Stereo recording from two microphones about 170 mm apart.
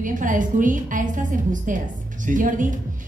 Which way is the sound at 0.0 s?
50° right (ahead or behind).